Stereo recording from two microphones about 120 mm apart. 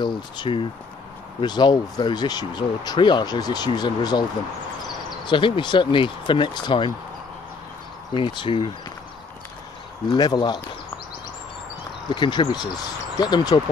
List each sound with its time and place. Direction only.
0.0 s speech: 40° left (ahead or behind)
8.1 s speech: 40° left (ahead or behind)
10.1 s speech: 35° left (ahead or behind)
12.1 s speech: 40° left (ahead or behind)